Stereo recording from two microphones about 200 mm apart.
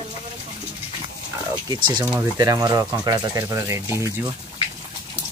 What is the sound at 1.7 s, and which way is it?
Speech, 20° right (ahead or behind).